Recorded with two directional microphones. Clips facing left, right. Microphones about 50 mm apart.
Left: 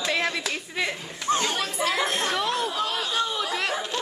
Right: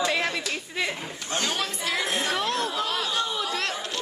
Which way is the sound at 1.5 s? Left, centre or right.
Centre.